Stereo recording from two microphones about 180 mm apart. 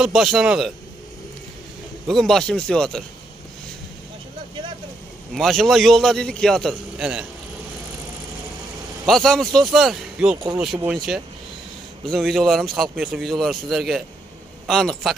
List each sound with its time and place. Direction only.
0.0 s a man's voice: centre (ahead or behind)
2.0 s a man's voice: centre (ahead or behind)
5.3 s a man's voice: centre (ahead or behind)
9.0 s a man's voice: centre (ahead or behind)